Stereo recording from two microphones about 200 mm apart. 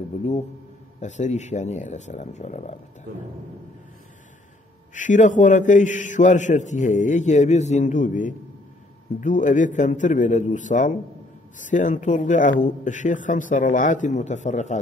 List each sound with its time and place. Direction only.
1.0 s a man's voice: 35° left (ahead or behind)
4.9 s a man's voice: 40° left (ahead or behind)